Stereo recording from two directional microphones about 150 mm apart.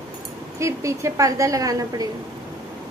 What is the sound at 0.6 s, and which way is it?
A woman's voice, 20° right (ahead or behind).